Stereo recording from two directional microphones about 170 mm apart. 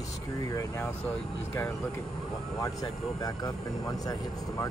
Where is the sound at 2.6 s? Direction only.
20° left (ahead or behind).